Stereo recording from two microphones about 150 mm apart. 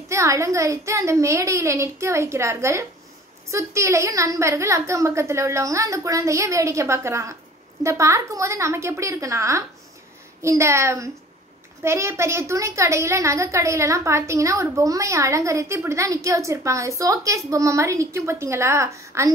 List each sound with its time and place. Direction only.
0.1 s a woman's voice: 20° right (ahead or behind)